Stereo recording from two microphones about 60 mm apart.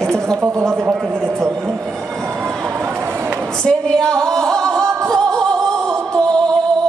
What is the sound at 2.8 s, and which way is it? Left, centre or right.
Run, right.